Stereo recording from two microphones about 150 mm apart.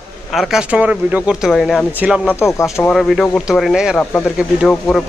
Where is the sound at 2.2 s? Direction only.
15° left (ahead or behind).